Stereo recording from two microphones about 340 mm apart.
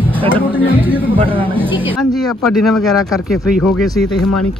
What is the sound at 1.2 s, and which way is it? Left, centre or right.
Speech, centre.